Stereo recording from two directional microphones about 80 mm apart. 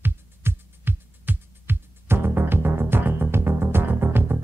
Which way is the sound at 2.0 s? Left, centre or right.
Right.